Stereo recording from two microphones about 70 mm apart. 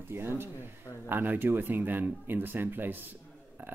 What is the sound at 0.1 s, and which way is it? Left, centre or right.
Speech, right.